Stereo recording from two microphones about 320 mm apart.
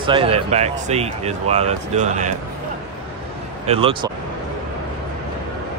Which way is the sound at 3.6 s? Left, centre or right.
Centre.